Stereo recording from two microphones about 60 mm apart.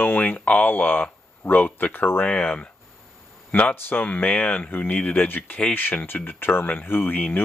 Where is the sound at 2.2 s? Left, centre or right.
Left.